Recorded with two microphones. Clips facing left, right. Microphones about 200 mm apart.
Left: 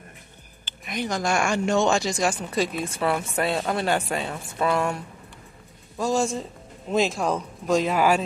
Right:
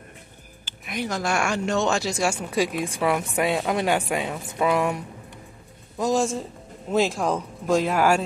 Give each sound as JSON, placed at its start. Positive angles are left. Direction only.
{"t": 0.7, "sound": "a man's voice", "side_deg": -5}